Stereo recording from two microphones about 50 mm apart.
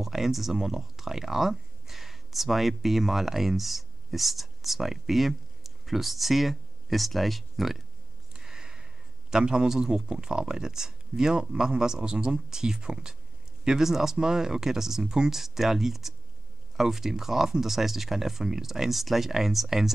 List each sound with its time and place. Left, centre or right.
0.0 s speech: centre
8.3 s a sound: centre
9.3 s speech: centre